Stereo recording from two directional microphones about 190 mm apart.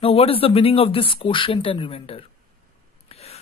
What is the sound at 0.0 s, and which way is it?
Speech, 30° left (ahead or behind).